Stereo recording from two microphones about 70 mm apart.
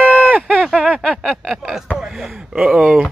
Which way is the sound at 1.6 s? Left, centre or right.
Centre.